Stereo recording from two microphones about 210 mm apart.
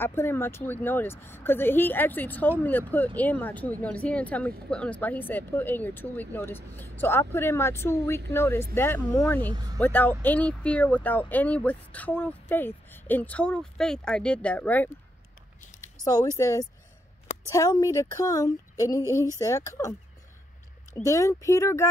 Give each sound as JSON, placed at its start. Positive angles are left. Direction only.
{"t": 0.0, "sound": "speech", "side_deg": 10}
{"t": 9.5, "sound": "speech", "side_deg": -20}
{"t": 9.8, "sound": "speech", "side_deg": 10}